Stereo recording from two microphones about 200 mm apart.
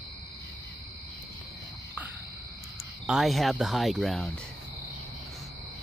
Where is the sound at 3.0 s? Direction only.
Centre (ahead or behind).